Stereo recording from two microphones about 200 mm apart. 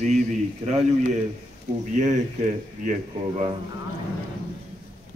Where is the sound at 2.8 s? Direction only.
40° right (ahead or behind).